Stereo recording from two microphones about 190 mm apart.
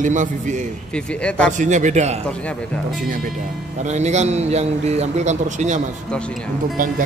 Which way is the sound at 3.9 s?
35° right (ahead or behind).